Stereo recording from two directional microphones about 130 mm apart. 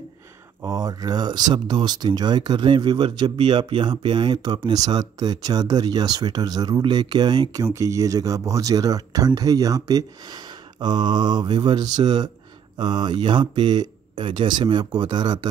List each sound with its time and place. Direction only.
0.6 s speech: 25° right (ahead or behind)